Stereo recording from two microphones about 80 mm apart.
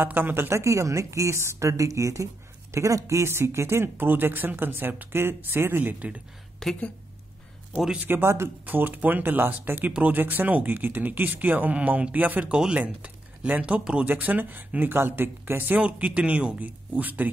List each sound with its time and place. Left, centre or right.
0.0 s a woman's voice: right
6.6 s a woman's voice: centre
7.8 s speech: centre
8.1 s speech: right